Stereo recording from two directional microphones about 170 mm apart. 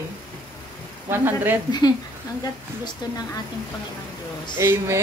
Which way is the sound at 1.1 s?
10° right (ahead or behind).